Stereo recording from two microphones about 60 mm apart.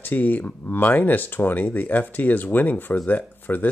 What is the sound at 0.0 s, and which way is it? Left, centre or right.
Speech, left.